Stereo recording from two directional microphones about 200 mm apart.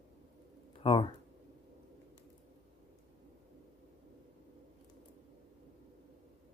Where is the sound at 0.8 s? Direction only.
25° left (ahead or behind).